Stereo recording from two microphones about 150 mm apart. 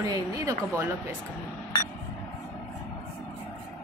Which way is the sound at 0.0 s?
25° right (ahead or behind).